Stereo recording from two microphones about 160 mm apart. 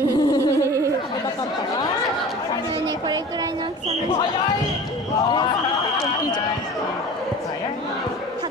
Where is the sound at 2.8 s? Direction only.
25° right (ahead or behind).